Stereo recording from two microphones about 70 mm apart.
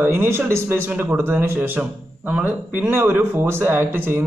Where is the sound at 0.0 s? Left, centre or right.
Right.